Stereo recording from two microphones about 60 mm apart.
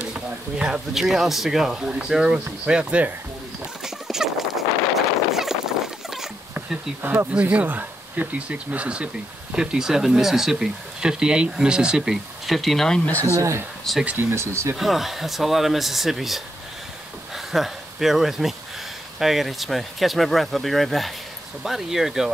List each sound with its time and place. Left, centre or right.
0.6 s speech: centre
3.8 s a sound: centre
7.0 s speech: right
7.3 s speech: right
12.4 s speech: centre
13.2 s speech: right
14.8 s speech: centre
17.5 s speech: centre